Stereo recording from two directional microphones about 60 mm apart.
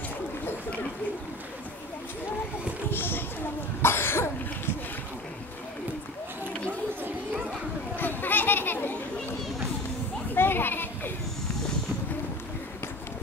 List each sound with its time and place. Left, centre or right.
2.9 s a sound: left
3.8 s cough: left
7.9 s children playing: left
10.3 s children playing: left